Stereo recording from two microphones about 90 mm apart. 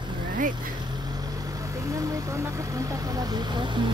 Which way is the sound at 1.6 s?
40° right (ahead or behind).